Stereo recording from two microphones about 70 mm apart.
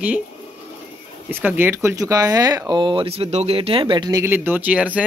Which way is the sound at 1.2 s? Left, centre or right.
Right.